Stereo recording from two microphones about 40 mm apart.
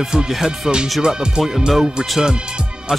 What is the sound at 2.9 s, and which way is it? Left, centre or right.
Speech, centre.